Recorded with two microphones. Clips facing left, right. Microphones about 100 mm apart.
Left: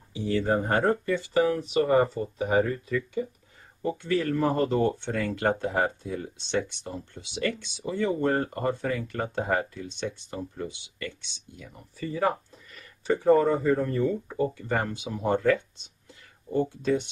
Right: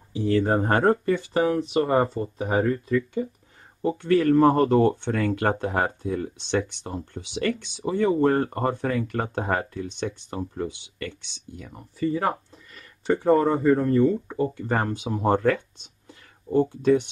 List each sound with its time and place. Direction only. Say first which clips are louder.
0.1 s speech: right 4 dB; 55° right (ahead or behind)
1.3 s speech: even; 35° right (ahead or behind)
2.6 s speech: right 5 dB; 45° right (ahead or behind)
4.0 s speech: right 8 dB; 50° right (ahead or behind)
8.2 s speech: right 5 dB; 40° right (ahead or behind)
11.7 s speech: right 8 dB; 35° right (ahead or behind)